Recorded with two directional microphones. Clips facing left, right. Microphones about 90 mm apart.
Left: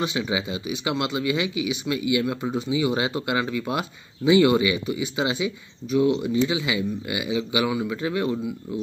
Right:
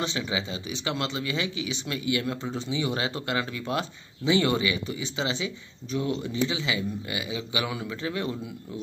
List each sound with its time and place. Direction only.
0.0 s speech: 10° left (ahead or behind)
7.6 s speech: 5° left (ahead or behind)
7.9 s a man's voice: 20° left (ahead or behind)